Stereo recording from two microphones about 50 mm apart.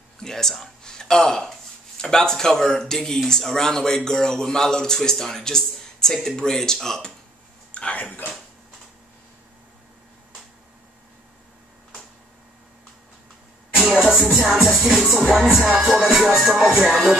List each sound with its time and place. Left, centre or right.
0.2 s a man's voice: centre
7.7 s a sound: left
13.7 s music: centre